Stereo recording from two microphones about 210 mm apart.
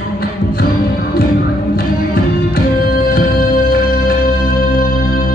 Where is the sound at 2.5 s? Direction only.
45° left (ahead or behind).